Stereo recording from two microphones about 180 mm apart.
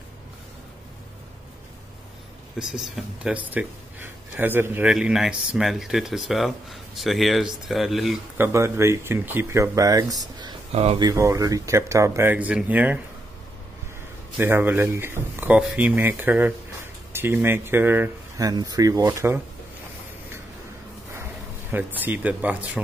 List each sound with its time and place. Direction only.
2.6 s speech: centre (ahead or behind)
8.4 s speech: 15° right (ahead or behind)
10.7 s speech: 35° right (ahead or behind)
11.0 s speech: 20° right (ahead or behind)
14.4 s speech: 10° right (ahead or behind)
21.1 s a sound: 15° right (ahead or behind)
22.0 s speech: 10° right (ahead or behind)